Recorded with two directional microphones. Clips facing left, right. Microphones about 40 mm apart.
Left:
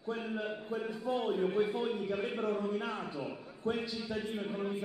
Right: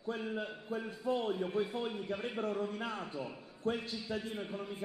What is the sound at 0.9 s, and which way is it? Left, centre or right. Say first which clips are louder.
A man's voice: left 1 dB; left.